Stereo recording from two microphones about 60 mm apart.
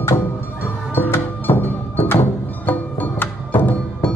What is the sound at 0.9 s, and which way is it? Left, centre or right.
Music, left.